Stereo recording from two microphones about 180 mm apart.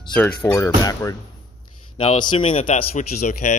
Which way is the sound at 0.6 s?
20° left (ahead or behind).